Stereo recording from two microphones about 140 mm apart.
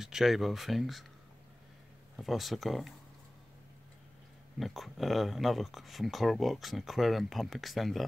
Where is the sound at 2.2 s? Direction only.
Centre (ahead or behind).